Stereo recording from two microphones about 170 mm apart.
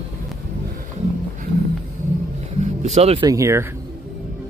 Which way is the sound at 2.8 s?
40° right (ahead or behind).